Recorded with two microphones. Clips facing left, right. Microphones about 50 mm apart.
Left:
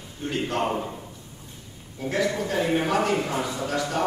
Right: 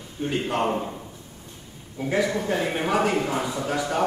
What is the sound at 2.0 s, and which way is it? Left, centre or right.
A man's voice, centre.